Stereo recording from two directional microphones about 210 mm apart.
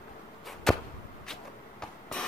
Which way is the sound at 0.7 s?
Centre (ahead or behind).